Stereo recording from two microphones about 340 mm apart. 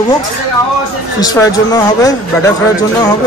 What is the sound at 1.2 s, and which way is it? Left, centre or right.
Speech, centre.